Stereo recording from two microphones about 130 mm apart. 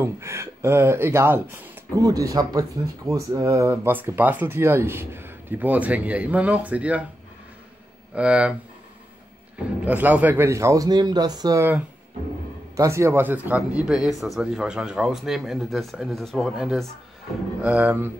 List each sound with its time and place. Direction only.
0.0 s speech: 20° right (ahead or behind)
8.1 s speech: 10° right (ahead or behind)
9.8 s speech: 10° right (ahead or behind); by 11.6 s 30° right (ahead or behind)
12.7 s speech: 25° right (ahead or behind)
13.6 s speech: 5° right (ahead or behind)
17.6 s speech: 10° right (ahead or behind)